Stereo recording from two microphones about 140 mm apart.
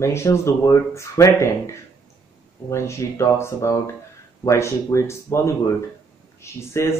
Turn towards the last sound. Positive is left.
turn(degrees=20)  # may be behind; listen again after turning